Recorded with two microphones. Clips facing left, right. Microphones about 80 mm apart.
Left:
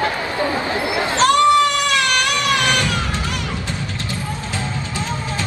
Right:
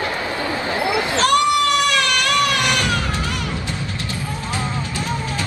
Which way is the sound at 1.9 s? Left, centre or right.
Left.